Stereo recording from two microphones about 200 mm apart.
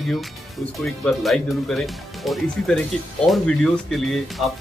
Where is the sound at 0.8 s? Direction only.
Centre (ahead or behind).